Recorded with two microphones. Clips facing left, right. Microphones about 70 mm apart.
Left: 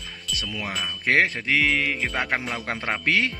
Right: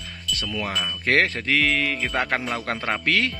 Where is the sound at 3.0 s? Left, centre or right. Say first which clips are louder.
Left 1 dB; left.